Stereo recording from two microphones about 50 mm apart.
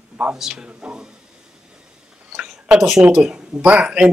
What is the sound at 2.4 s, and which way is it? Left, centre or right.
A woman's voice, centre.